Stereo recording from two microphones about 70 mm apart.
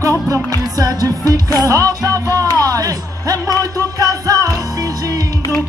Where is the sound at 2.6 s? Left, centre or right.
Right.